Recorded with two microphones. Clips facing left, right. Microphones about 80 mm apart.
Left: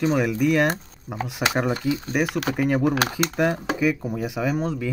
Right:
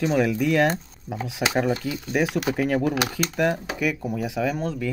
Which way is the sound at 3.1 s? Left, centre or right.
Centre.